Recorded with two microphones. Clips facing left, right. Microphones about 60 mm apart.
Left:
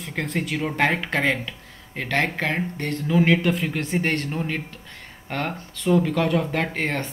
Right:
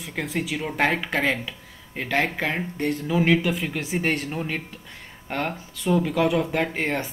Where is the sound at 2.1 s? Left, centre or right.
Centre.